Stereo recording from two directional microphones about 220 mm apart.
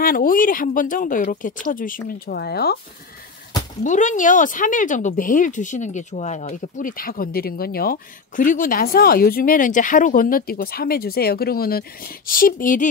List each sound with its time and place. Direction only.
0.0 s speech: 40° left (ahead or behind)
3.8 s speech: 35° left (ahead or behind)